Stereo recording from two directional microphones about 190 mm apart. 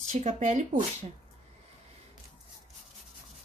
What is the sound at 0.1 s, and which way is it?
Speech, 40° right (ahead or behind).